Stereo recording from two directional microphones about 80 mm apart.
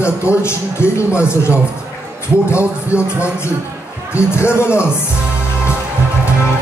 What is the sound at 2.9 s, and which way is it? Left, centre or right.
Speech, left.